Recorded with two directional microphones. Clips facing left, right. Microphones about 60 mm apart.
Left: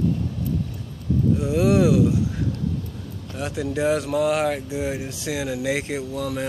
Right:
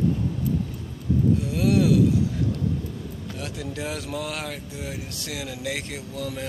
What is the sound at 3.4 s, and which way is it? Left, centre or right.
Speech, centre.